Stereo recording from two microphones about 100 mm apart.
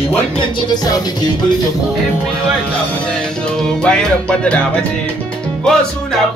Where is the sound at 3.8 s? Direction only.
10° left (ahead or behind).